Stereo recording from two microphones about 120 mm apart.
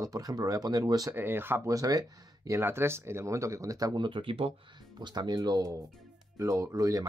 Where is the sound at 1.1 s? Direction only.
15° right (ahead or behind).